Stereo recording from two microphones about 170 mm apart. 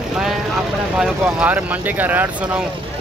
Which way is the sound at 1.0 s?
10° right (ahead or behind).